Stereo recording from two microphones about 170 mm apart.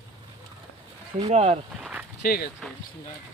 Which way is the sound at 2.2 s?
70° left (ahead or behind).